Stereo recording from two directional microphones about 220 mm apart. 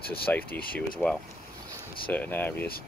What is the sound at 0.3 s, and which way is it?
Speech, 5° left (ahead or behind).